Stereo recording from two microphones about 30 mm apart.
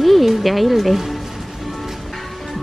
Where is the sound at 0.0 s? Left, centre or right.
Centre.